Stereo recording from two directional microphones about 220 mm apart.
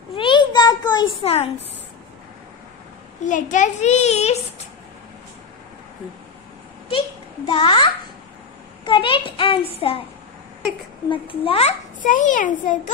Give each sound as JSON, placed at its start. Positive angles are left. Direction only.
{"t": 0.1, "sound": "a sound", "side_deg": 20}
{"t": 3.3, "sound": "a child's voice", "side_deg": 35}
{"t": 7.4, "sound": "a child's voice", "side_deg": 20}
{"t": 11.1, "sound": "a child's voice", "side_deg": 25}